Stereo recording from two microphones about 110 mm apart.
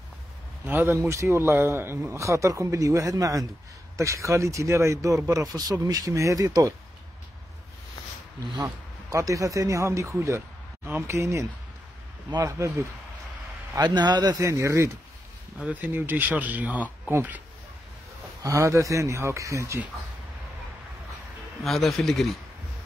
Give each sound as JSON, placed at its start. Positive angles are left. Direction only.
{"t": 0.7, "sound": "a man's voice", "side_deg": -20}
{"t": 8.6, "sound": "a man's voice", "side_deg": -30}
{"t": 12.4, "sound": "a man's voice", "side_deg": -25}
{"t": 13.7, "sound": "a man's voice", "side_deg": -40}
{"t": 14.3, "sound": "a man's voice", "side_deg": -30}
{"t": 15.6, "sound": "speech", "side_deg": -15}
{"t": 18.4, "sound": "a man's voice", "side_deg": -30}
{"t": 21.6, "sound": "speech", "side_deg": 0}